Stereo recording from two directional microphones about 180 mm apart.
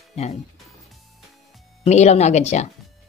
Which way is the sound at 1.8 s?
40° left (ahead or behind).